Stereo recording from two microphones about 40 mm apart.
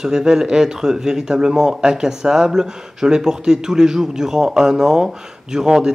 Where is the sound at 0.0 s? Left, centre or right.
Centre.